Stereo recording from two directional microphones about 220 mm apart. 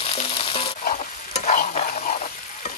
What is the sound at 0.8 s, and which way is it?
Stir, 30° left (ahead or behind).